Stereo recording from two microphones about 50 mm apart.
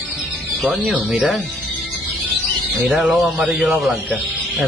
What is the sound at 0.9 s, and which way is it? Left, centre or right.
Speech, right.